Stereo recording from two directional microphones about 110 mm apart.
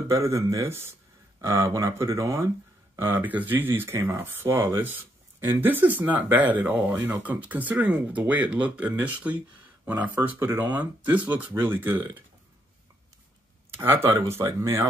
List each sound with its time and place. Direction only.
0.1 s speech: 25° right (ahead or behind)
13.7 s speech: 20° right (ahead or behind)